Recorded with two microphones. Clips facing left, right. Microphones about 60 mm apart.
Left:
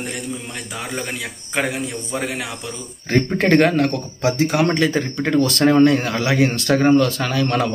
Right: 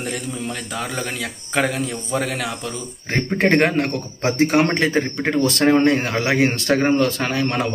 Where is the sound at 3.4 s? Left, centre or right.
Right.